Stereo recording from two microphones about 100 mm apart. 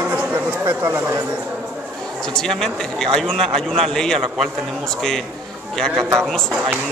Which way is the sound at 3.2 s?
5° left (ahead or behind).